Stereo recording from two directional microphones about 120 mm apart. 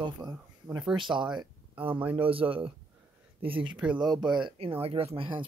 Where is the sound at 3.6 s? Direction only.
10° right (ahead or behind).